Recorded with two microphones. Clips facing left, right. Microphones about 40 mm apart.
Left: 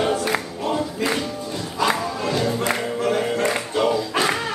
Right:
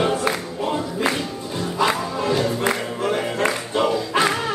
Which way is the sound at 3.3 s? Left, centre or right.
Right.